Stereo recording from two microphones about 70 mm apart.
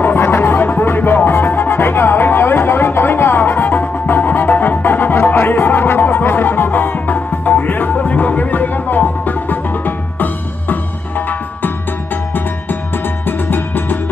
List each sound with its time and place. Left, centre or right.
0.0 s music: left
13.5 s music: left